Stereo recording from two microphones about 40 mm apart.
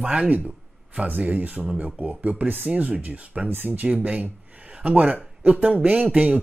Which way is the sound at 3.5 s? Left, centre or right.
Right.